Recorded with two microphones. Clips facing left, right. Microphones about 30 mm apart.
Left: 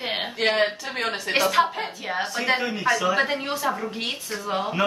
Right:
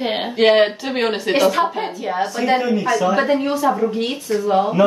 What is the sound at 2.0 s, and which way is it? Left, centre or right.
A woman's voice, centre.